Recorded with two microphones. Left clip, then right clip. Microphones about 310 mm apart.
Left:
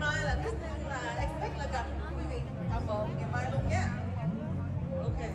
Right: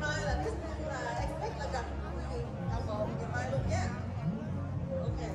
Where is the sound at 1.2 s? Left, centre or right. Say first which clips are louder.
Left 1 dB; left.